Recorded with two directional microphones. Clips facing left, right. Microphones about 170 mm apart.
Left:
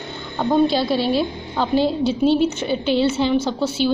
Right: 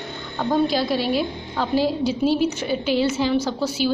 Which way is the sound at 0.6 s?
30° left (ahead or behind).